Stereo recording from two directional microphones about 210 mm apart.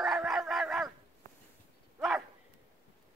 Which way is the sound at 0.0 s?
Centre (ahead or behind).